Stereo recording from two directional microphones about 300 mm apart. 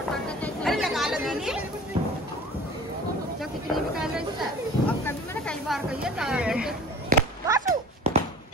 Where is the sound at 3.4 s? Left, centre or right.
Centre.